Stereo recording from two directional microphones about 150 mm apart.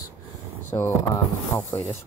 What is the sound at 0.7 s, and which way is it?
Speech, 15° left (ahead or behind).